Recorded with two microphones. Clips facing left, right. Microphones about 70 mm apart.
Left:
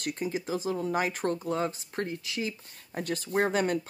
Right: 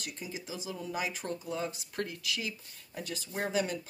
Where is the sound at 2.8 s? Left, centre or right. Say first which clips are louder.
Left 7 dB; left.